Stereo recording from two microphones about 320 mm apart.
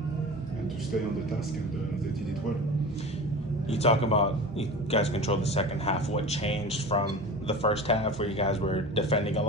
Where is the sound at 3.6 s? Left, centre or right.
Centre.